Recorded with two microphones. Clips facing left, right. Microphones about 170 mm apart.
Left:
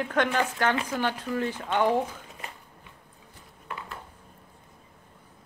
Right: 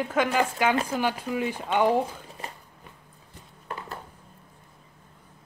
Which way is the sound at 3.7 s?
40° right (ahead or behind).